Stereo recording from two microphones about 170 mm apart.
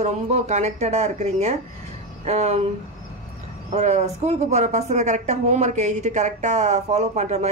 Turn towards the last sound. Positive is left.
turn(degrees=-40)  # may be behind; listen again after turning